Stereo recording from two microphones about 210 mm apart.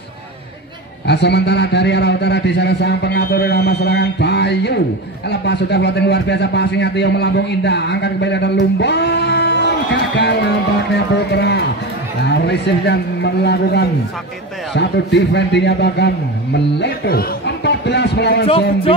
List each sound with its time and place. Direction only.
1.0 s a man's voice: 55° left (ahead or behind)